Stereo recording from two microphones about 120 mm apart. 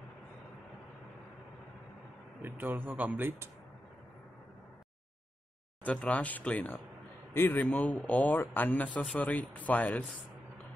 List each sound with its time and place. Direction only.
2.4 s a man's voice: 15° right (ahead or behind)
5.9 s speech: 10° left (ahead or behind)